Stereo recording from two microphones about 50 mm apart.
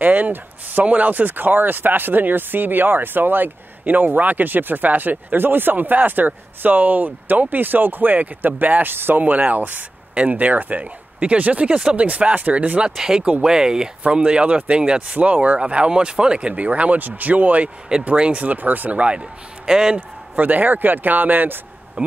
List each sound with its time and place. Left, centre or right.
0.0 s speech: right
9.2 s speech: right
12.9 s speech: centre; by 18.9 s right
18.9 s a man's voice: right
20.3 s speech: right
22.0 s speech: right